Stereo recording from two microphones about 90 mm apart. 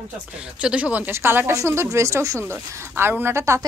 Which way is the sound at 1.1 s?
25° right (ahead or behind).